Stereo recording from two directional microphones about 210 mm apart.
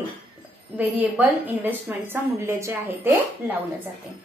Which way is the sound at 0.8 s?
10° right (ahead or behind).